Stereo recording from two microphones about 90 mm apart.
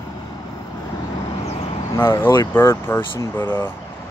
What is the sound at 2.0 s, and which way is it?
Speech, 25° left (ahead or behind).